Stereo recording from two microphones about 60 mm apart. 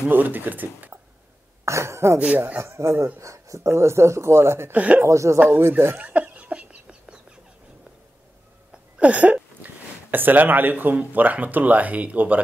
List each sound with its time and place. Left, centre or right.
0.1 s speech: right
1.6 s speech: right
2.1 s speech: right
2.6 s speech: right
4.7 s speech: right
5.0 s speech: right
5.6 s speech: right
5.9 s cough: right
8.9 s a sound: right
10.1 s speech: right